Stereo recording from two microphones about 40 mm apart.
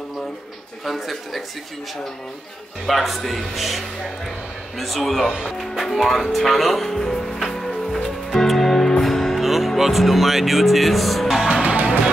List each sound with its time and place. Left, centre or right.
0.8 s speech: centre
2.9 s speech: centre
7.6 s music: centre
11.4 s music: right